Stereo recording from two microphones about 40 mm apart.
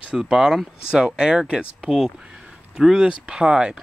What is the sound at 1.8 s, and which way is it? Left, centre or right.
Speech, centre.